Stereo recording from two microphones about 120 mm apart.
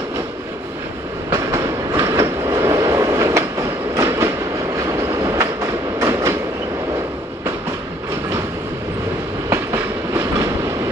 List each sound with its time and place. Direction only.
1.3 s train: 25° right (ahead or behind)
9.5 s train: 25° right (ahead or behind)